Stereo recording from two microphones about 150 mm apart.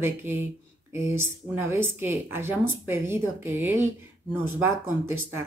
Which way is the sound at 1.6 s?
15° right (ahead or behind).